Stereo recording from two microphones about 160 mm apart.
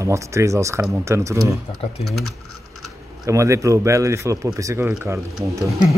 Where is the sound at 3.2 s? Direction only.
20° right (ahead or behind).